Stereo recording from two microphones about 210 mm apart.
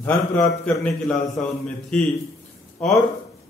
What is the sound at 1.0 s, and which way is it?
A man's voice, 5° left (ahead or behind).